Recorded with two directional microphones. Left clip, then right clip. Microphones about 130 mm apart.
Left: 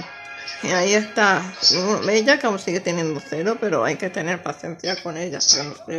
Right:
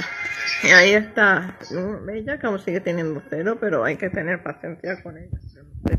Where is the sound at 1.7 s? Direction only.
35° left (ahead or behind).